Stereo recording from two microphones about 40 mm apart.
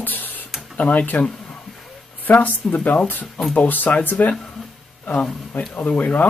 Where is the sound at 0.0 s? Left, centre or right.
Left.